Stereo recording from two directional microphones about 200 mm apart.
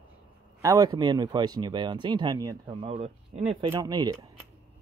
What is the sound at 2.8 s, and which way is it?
Speech, 30° right (ahead or behind).